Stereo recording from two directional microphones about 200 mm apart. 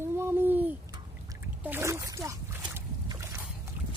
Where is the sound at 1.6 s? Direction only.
10° right (ahead or behind).